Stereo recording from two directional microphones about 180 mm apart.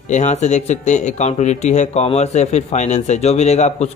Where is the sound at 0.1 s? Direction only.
40° left (ahead or behind).